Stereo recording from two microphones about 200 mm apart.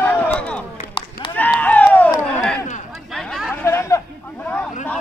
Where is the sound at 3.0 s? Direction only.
Centre (ahead or behind).